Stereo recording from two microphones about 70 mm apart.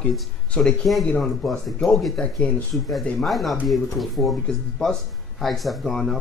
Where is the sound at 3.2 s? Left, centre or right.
Centre.